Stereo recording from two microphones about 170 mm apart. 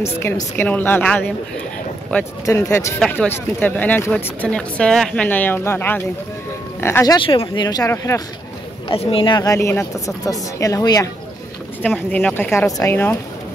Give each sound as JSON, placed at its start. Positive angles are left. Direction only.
{"t": 0.0, "sound": "speech", "side_deg": 15}
{"t": 2.4, "sound": "speech", "side_deg": 15}
{"t": 7.2, "sound": "speech", "side_deg": 30}
{"t": 8.8, "sound": "speech", "side_deg": 35}
{"t": 11.8, "sound": "speech", "side_deg": 10}